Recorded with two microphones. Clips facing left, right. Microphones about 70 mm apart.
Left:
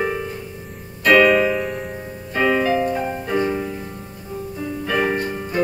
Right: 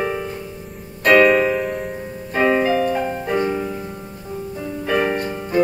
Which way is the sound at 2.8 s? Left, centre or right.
Right.